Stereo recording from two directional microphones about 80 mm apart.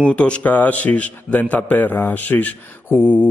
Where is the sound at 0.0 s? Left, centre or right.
Centre.